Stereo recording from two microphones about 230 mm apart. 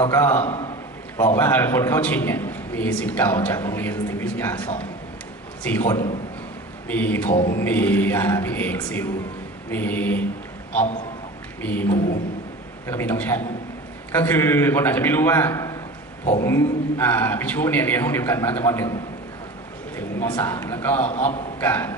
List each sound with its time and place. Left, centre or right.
0.0 s a man's voice: centre
11.6 s a man's voice: centre
20.0 s a man's voice: centre
21.1 s a man's voice: left
21.5 s a man's voice: centre